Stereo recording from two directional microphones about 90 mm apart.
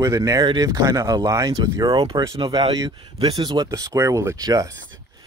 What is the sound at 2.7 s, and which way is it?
Speech, 45° right (ahead or behind).